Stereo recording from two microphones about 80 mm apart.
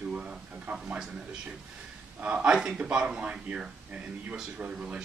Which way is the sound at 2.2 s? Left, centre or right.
Centre.